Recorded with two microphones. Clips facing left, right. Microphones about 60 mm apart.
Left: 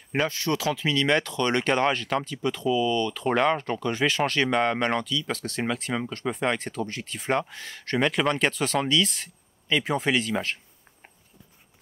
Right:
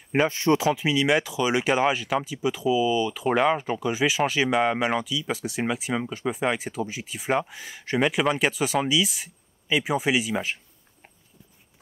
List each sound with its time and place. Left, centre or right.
0.1 s speech: centre
0.7 s speech: centre